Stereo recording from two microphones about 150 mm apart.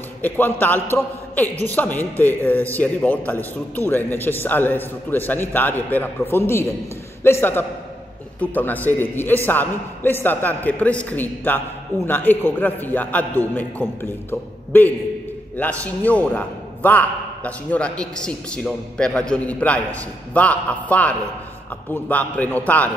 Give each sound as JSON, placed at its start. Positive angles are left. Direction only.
{"t": 0.2, "sound": "a man's voice", "side_deg": 10}
{"t": 15.8, "sound": "a man's voice", "side_deg": 10}